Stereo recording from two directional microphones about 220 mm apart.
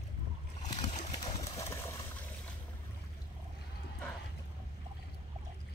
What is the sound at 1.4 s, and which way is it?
Vehicle, 15° left (ahead or behind).